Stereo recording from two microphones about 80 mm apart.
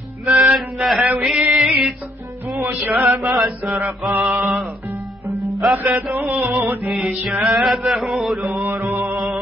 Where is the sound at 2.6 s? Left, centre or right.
Right.